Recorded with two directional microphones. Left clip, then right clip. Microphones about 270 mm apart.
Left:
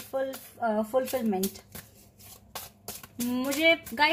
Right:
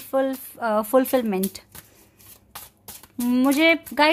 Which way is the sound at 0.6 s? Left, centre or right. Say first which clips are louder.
Right 3 dB; right.